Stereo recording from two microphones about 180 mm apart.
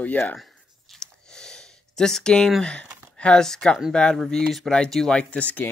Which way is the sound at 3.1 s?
5° left (ahead or behind).